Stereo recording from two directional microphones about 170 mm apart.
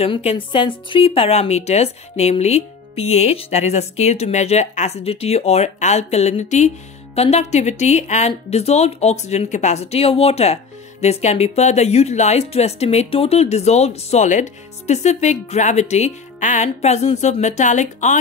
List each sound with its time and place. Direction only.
0.0 s speech: 35° left (ahead or behind)